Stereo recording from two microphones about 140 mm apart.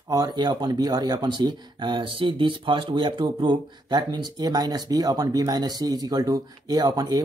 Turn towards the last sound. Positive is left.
turn(degrees=-30)  # may be behind; listen again after turning